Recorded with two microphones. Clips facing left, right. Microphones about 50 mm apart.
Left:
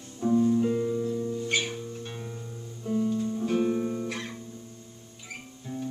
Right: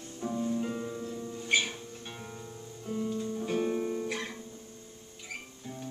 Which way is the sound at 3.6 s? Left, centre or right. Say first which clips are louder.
Left 3 dB; centre.